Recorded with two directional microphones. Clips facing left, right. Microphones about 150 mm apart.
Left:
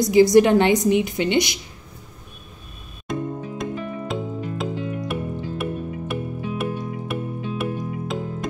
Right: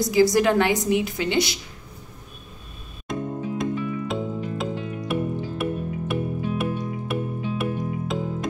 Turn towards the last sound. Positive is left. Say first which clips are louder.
# even
turn(degrees=0)  # may be behind; listen again after turning